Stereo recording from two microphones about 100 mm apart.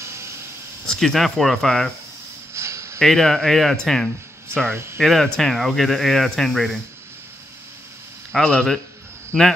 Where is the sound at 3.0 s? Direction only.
5° left (ahead or behind).